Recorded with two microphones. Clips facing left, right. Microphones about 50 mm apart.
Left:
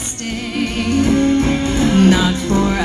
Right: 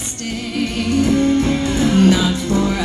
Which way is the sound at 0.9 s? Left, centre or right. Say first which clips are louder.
Left 1 dB; left.